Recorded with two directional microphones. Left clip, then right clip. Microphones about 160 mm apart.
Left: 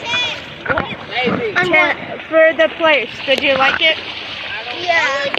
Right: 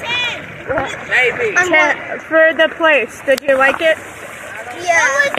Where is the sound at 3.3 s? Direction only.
40° right (ahead or behind).